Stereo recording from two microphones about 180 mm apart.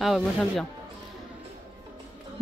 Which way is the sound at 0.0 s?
Centre (ahead or behind).